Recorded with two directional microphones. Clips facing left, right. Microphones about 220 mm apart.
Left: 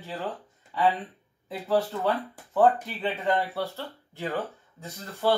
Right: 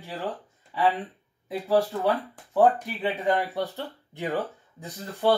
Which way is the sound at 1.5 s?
15° right (ahead or behind).